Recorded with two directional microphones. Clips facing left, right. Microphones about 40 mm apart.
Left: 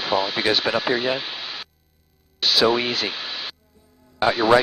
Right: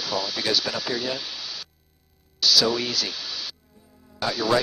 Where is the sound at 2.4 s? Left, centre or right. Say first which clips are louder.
Left 3 dB; left.